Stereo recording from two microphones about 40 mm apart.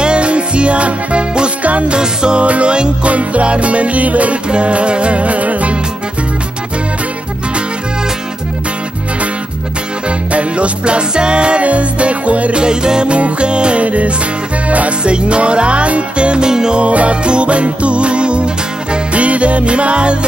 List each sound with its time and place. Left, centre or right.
0.0 s music: right
2.0 s music: right
10.0 s music: right
12.6 s music: right
16.8 s music: right